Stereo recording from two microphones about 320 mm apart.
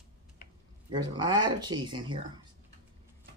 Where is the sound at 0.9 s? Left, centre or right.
Centre.